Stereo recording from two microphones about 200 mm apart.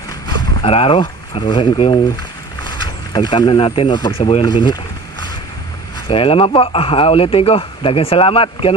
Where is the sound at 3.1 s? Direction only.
20° left (ahead or behind).